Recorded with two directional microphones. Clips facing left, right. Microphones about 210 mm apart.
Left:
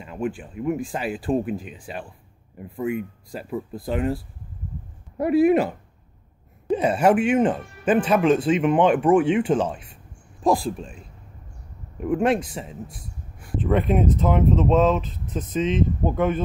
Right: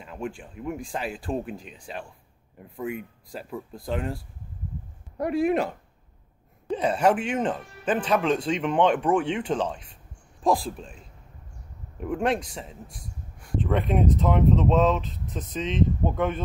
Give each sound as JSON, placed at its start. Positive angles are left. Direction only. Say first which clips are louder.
{"t": 0.0, "sound": "speech", "louder": "left 6 dB", "side_deg": 0}
{"t": 3.3, "sound": "speech", "louder": "left 5 dB", "side_deg": 0}
{"t": 6.7, "sound": "speech", "louder": "left 4 dB", "side_deg": 10}
{"t": 12.0, "sound": "speech", "louder": "left 5 dB", "side_deg": 5}